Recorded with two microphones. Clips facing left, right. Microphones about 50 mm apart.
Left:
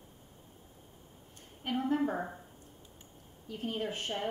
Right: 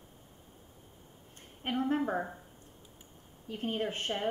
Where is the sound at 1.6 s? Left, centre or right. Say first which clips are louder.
Even; right.